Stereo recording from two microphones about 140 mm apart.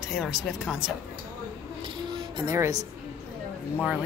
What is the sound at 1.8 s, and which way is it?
Music, 35° right (ahead or behind).